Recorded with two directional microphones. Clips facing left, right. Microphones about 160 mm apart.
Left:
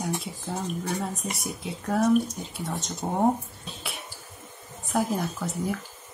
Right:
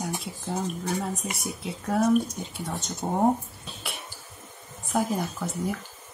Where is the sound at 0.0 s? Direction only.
Centre (ahead or behind).